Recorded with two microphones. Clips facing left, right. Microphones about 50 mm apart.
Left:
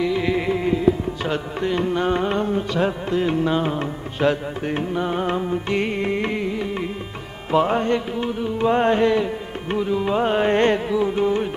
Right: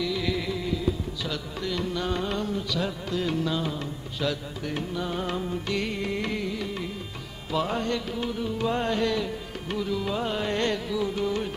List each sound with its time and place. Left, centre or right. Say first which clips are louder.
0.0 s music: left 7 dB; left